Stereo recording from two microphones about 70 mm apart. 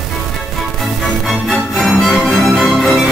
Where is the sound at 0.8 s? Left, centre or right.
Centre.